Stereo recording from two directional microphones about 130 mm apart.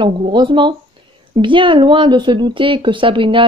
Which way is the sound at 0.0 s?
35° right (ahead or behind).